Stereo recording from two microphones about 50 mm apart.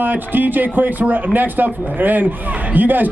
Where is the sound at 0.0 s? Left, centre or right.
Right.